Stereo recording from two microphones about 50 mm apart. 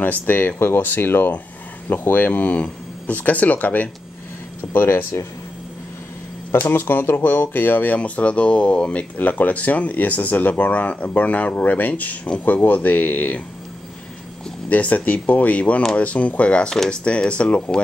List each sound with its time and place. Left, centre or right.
0.0 s speech: left
0.6 s speech: left
4.7 s speech: left
6.5 s speech: left
7.5 s speech: left
14.7 s speech: left